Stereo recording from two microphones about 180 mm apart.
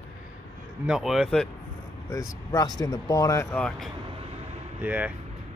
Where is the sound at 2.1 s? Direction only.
20° left (ahead or behind).